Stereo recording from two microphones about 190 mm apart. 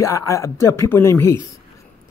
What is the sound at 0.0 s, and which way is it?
Speech, 15° left (ahead or behind).